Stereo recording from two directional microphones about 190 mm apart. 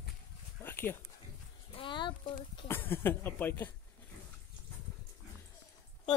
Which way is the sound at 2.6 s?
10° left (ahead or behind).